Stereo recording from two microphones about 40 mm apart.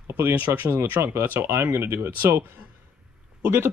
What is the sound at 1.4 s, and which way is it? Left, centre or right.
Speech, right.